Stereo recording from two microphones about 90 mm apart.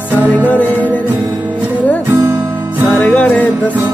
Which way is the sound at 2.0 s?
30° right (ahead or behind).